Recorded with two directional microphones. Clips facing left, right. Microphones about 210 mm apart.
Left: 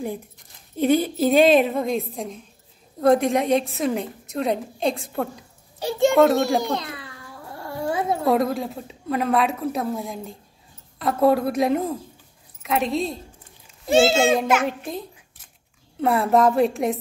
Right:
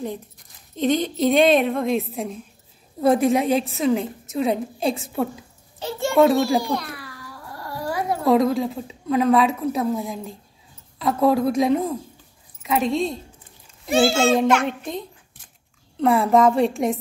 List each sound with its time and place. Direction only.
0.7 s a woman's voice: 10° left (ahead or behind)
5.8 s a child's voice: 15° left (ahead or behind)
6.6 s a sound: 20° left (ahead or behind)
8.3 s a woman's voice: centre (ahead or behind)
13.8 s a child's voice: 25° left (ahead or behind)
14.3 s a woman's voice: 5° left (ahead or behind)